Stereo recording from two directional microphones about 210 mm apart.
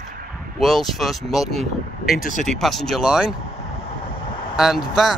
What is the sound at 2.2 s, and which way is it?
Speech, 35° left (ahead or behind).